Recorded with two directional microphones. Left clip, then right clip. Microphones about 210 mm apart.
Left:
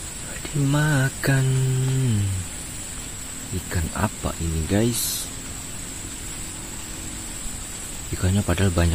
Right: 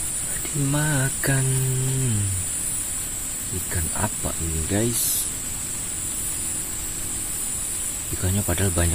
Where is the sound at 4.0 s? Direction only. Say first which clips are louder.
Left 2 dB; 15° left (ahead or behind).